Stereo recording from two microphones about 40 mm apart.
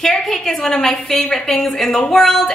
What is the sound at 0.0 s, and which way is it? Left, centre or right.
A woman's voice, centre.